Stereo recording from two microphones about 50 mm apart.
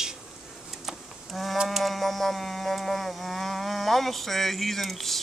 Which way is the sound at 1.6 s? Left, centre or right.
Centre.